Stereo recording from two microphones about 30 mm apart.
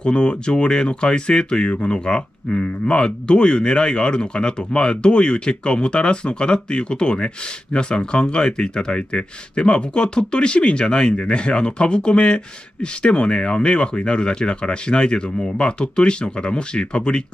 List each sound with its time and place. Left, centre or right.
0.0 s speech: left